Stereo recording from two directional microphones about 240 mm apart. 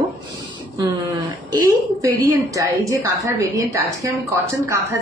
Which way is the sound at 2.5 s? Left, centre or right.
Centre.